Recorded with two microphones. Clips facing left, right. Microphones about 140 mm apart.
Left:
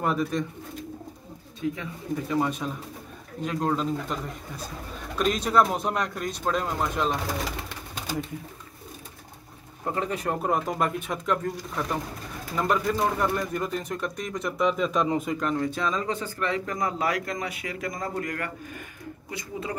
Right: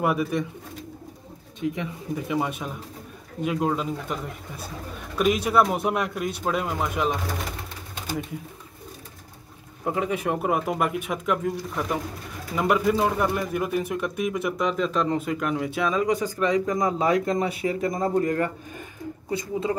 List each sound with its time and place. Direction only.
0.0 s speech: 10° right (ahead or behind)
1.6 s speech: 20° right (ahead or behind)
2.6 s speech: 5° right (ahead or behind)
9.8 s speech: 5° right (ahead or behind); by 18.5 s 30° right (ahead or behind)